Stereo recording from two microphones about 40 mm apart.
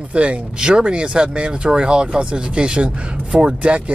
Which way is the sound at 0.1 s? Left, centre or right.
Right.